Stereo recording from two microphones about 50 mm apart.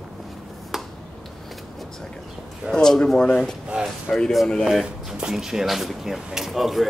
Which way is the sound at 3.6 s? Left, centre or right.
Centre.